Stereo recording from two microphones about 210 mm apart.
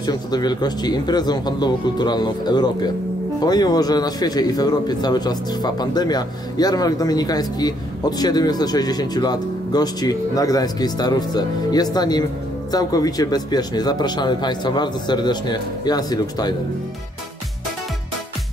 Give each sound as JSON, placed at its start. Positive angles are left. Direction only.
{"t": 0.0, "sound": "speech", "side_deg": 20}